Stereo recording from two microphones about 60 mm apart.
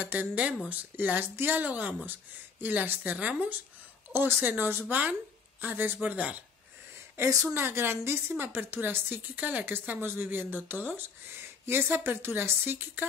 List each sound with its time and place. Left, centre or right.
0.0 s a woman's voice: right
7.2 s speech: right
7.5 s a woman's voice: right